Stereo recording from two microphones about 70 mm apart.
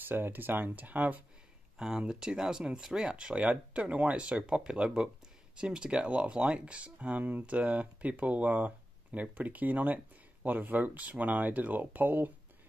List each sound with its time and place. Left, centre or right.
0.0 s speech: right
1.8 s speech: centre; by 12.3 s right